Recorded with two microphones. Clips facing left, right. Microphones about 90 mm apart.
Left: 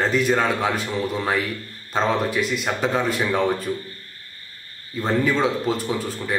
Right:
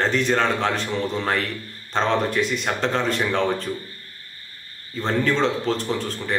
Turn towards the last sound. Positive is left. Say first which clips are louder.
# even
turn(degrees=5)  # may be behind; listen again after turning